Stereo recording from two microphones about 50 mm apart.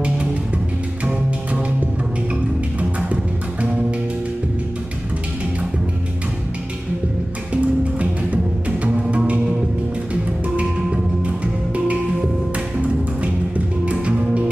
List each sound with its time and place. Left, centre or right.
2.8 s music: right
7.5 s music: right
10.5 s music: right